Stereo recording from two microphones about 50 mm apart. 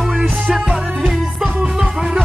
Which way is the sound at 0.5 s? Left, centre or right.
Centre.